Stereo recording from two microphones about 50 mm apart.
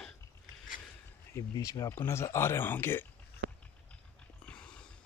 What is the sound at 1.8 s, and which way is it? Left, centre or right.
Speech, left.